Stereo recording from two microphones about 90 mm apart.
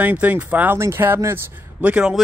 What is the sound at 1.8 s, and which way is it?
Speech, 15° right (ahead or behind).